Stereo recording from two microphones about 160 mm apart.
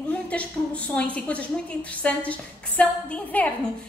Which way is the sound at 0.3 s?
10° left (ahead or behind).